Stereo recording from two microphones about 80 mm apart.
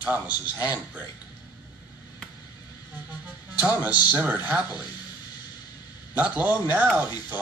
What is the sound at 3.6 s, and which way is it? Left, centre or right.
Speech, right.